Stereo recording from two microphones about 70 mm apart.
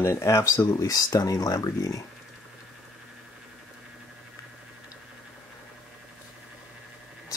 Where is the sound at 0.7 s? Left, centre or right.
Left.